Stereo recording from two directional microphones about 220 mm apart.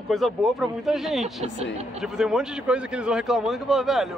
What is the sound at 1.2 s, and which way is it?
Speech, 30° right (ahead or behind).